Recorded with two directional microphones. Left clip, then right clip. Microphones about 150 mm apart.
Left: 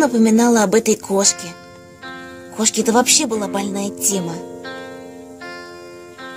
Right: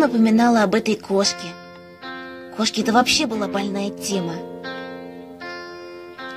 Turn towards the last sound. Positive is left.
turn(degrees=20)  # may be behind; listen again after turning